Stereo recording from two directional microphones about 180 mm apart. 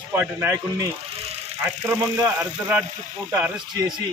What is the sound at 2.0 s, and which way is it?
A man's voice, 15° right (ahead or behind).